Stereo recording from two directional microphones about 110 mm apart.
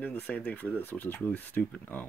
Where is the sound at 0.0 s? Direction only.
15° left (ahead or behind).